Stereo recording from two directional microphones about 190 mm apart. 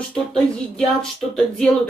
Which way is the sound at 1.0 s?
5° left (ahead or behind).